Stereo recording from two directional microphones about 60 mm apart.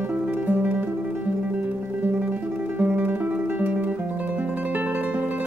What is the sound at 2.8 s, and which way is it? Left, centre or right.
Music, right.